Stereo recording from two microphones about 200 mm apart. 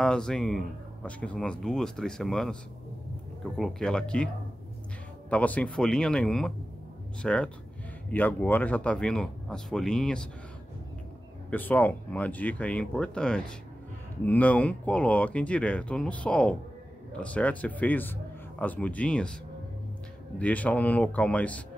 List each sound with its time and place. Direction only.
0.0 s speech: 5° left (ahead or behind)
3.5 s speech: centre (ahead or behind)
5.3 s speech: 5° left (ahead or behind)
11.5 s speech: 10° left (ahead or behind)
20.3 s speech: 5° left (ahead or behind)